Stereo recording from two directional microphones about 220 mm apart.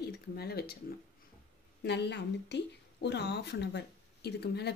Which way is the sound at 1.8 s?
50° left (ahead or behind).